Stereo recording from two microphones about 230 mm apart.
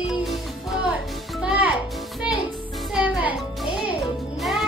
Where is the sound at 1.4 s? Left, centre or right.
Centre.